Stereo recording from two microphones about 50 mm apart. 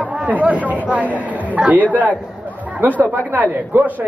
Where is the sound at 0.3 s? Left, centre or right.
Right.